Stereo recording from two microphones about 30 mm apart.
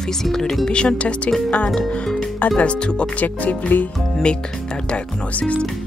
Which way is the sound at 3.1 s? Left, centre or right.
Left.